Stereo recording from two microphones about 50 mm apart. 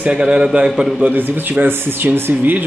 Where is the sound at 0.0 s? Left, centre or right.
Centre.